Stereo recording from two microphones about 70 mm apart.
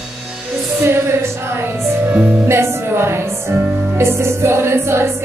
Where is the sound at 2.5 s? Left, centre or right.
Right.